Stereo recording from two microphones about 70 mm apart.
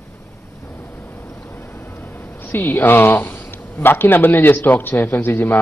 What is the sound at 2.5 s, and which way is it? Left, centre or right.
A man's voice, left.